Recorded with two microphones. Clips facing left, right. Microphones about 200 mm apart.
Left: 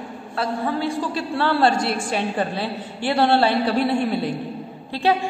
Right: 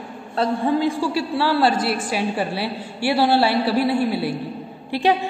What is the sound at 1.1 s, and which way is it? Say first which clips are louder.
A woman's voice: right 1 dB; 5° right (ahead or behind).